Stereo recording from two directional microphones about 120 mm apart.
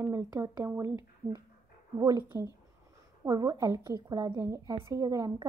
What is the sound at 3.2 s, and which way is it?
A woman's voice, 30° right (ahead or behind).